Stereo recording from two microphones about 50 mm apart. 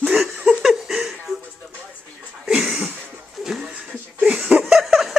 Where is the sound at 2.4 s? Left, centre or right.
Centre.